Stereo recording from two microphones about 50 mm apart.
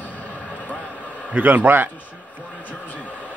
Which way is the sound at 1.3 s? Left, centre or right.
Right.